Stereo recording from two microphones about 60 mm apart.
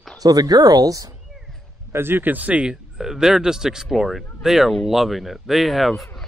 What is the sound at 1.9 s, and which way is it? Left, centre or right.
Speech, right.